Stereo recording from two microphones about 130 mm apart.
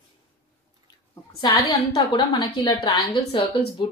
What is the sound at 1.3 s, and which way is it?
Speech, 35° left (ahead or behind).